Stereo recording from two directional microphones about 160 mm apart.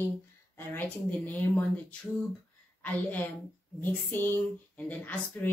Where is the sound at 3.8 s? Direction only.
10° left (ahead or behind).